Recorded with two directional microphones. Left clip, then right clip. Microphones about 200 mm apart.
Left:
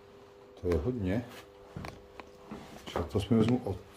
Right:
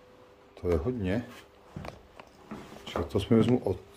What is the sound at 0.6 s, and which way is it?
Speech, 5° right (ahead or behind).